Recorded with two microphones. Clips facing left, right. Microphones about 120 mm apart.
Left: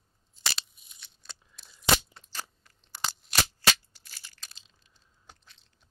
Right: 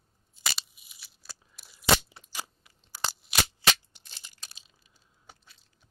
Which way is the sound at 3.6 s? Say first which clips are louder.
Even; 20° right (ahead or behind).